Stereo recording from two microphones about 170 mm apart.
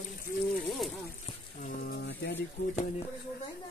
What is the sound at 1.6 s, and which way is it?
Speech, 60° left (ahead or behind).